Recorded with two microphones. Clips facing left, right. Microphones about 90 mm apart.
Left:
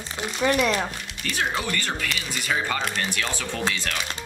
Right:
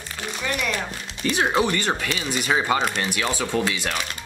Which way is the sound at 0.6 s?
20° left (ahead or behind).